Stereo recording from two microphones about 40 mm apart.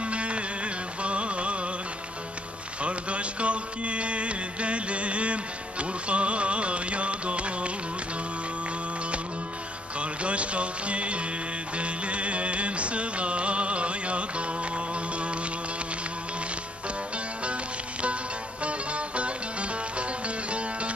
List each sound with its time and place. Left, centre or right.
0.0 s music: right
2.8 s music: right
9.9 s music: right
18.6 s music: right